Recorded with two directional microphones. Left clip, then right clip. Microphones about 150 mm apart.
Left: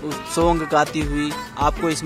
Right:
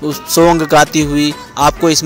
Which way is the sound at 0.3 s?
30° right (ahead or behind).